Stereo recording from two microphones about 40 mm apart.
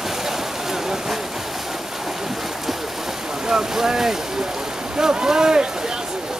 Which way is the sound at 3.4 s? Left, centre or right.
Centre.